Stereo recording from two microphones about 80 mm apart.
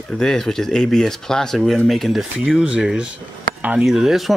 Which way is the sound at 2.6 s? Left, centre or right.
Centre.